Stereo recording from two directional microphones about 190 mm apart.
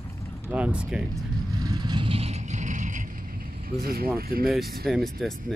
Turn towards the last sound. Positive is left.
turn(degrees=0)  # may be behind; listen again after turning